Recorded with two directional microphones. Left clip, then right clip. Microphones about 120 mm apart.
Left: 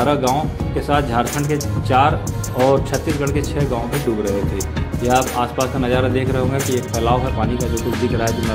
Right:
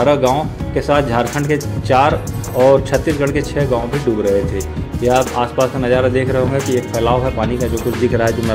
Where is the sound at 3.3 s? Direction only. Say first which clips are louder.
Right 4 dB; 15° right (ahead or behind).